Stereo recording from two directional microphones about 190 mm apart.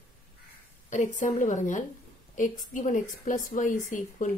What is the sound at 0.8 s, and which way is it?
A woman's voice, 40° left (ahead or behind).